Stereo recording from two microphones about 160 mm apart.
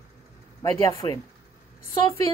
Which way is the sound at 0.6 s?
20° left (ahead or behind).